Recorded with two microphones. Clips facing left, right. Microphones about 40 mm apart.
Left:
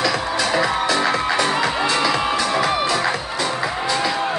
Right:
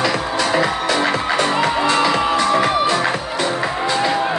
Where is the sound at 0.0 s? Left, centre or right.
Right.